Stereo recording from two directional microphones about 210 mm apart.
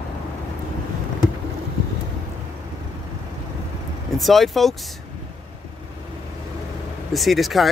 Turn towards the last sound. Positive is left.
turn(degrees=0)  # may be behind; listen again after turning